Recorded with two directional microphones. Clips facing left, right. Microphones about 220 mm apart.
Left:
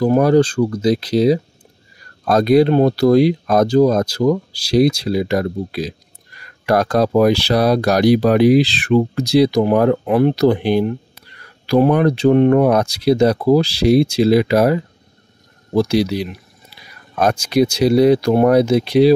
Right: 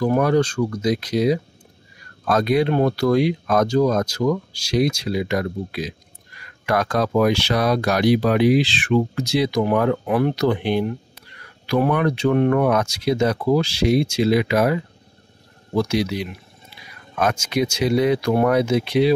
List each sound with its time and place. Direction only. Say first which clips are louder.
0.0 s speech: left 5 dB; 35° left (ahead or behind)